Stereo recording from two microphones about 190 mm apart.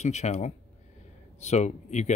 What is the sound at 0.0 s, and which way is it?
Speech, 35° left (ahead or behind).